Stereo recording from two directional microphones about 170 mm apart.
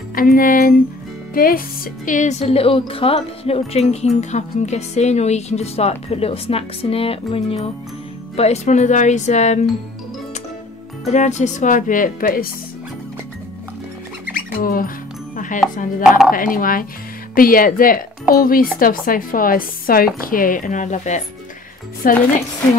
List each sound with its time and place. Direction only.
0.1 s speech: 55° left (ahead or behind)
2.0 s speech: 45° left (ahead or behind)
11.1 s speech: 45° left (ahead or behind)
14.6 s speech: 55° left (ahead or behind)
15.3 s music: 50° left (ahead or behind)
16.3 s speech: 55° left (ahead or behind)
22.0 s speech: 55° left (ahead or behind)